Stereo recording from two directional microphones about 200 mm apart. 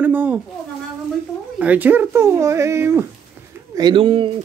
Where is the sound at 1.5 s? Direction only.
5° right (ahead or behind).